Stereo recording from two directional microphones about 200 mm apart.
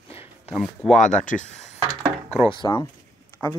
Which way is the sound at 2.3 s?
25° left (ahead or behind).